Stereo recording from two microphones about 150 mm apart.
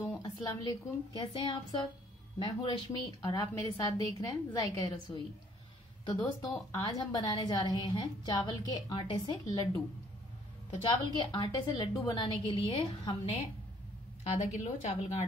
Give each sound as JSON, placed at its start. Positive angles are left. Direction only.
{"t": 0.2, "sound": "a woman's voice", "side_deg": 30}
{"t": 10.8, "sound": "a woman's voice", "side_deg": 30}
{"t": 14.3, "sound": "a woman's voice", "side_deg": 50}